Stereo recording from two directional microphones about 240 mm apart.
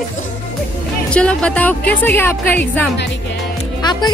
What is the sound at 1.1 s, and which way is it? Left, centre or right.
A woman's voice, centre.